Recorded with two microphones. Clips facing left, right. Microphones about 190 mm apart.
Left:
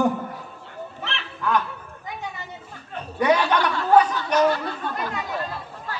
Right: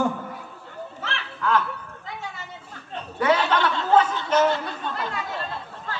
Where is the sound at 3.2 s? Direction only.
15° left (ahead or behind).